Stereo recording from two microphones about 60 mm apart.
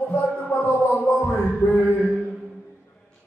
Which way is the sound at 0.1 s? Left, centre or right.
Left.